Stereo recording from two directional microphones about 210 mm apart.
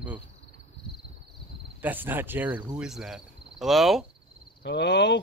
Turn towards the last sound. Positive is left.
turn(degrees=60)  # may be behind; listen again after turning